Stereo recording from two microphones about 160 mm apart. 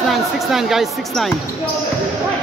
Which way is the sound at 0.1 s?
Centre (ahead or behind).